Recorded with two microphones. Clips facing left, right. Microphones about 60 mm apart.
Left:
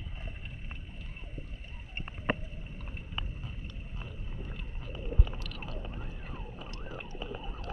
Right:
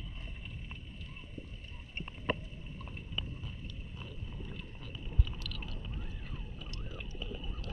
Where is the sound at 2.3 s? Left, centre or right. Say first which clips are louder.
Left 3 dB; left.